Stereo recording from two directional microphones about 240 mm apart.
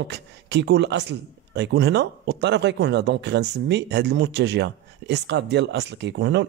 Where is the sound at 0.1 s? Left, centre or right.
Right.